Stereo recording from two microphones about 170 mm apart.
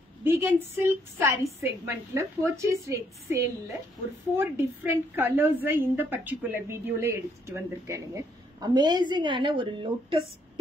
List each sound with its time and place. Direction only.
0.2 s a woman's voice: 15° right (ahead or behind); by 10.2 s 30° right (ahead or behind)